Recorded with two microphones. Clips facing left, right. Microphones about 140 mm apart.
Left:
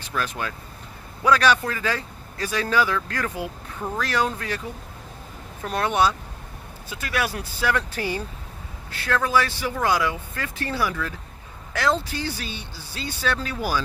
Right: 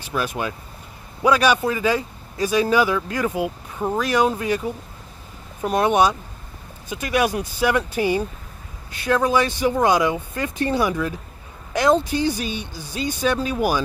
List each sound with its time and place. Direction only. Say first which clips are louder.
0.0 s a man's voice: right 4 dB; 10° right (ahead or behind)
5.6 s a man's voice: right 4 dB; 15° right (ahead or behind)